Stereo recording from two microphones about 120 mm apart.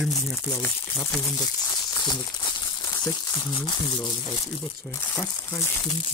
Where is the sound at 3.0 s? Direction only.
35° left (ahead or behind).